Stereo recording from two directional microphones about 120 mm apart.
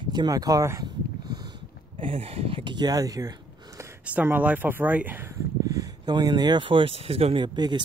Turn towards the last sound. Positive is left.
turn(degrees=-40)  # may be behind; listen again after turning